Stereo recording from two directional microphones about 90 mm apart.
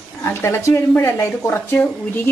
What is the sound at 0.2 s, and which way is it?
A woman's voice, 30° left (ahead or behind).